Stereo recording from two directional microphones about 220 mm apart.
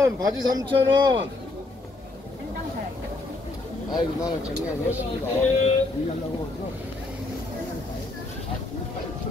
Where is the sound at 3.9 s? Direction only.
15° left (ahead or behind).